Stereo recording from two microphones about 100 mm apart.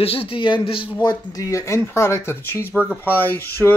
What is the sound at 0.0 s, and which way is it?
Speech, 70° left (ahead or behind).